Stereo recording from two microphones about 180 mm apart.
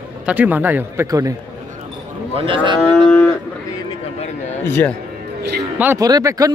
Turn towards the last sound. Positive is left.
turn(degrees=-20)  # may be behind; listen again after turning